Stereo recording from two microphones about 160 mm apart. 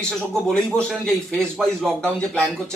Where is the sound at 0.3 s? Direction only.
Centre (ahead or behind).